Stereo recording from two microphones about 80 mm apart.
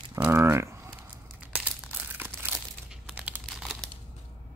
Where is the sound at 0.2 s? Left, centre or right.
Right.